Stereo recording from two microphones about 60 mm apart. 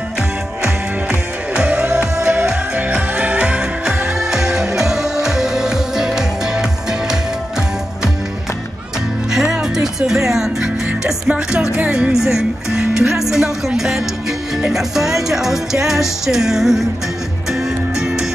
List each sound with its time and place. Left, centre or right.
1.5 s music: centre
9.3 s music: centre
11.1 s speech: centre
14.7 s music: centre